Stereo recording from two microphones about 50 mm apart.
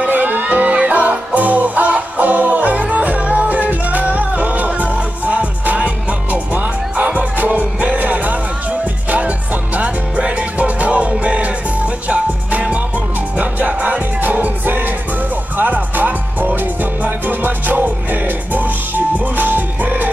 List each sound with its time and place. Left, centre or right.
0.0 s music: right
9.8 s music: right